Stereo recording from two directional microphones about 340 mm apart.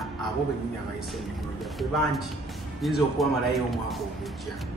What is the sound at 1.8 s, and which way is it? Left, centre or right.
Speech, centre.